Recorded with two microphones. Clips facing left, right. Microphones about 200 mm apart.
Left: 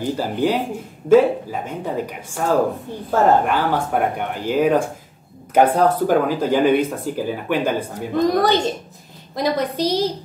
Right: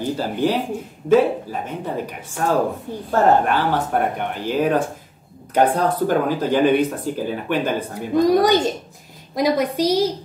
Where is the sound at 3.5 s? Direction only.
10° left (ahead or behind).